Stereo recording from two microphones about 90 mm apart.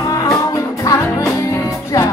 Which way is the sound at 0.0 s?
35° left (ahead or behind).